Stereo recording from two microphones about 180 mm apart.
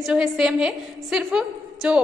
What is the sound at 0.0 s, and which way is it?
A woman's voice, 5° right (ahead or behind).